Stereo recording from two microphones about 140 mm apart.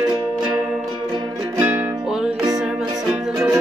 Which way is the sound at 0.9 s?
30° right (ahead or behind).